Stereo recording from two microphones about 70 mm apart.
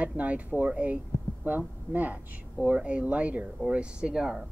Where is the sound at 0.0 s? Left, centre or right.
Centre.